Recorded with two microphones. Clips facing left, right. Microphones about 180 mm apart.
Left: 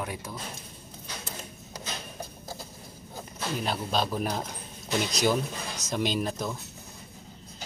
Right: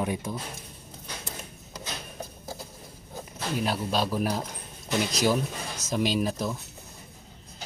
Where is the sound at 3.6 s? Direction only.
5° right (ahead or behind).